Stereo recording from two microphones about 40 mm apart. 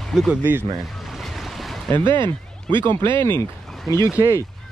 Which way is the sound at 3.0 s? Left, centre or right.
Left.